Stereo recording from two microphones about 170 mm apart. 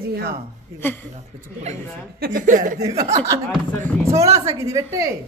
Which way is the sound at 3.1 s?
20° right (ahead or behind).